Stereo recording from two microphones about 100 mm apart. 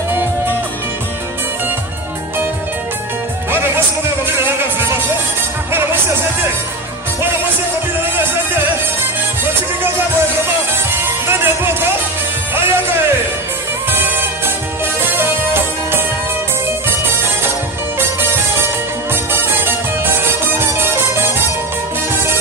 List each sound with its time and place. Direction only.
11.2 s music: 25° right (ahead or behind)
13.8 s music: 20° right (ahead or behind)
17.9 s music: 25° right (ahead or behind)